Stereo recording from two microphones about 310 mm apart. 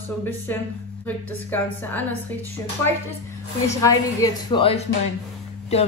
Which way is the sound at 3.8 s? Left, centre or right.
Centre.